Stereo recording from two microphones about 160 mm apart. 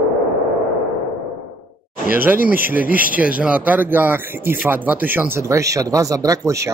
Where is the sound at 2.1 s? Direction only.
10° right (ahead or behind).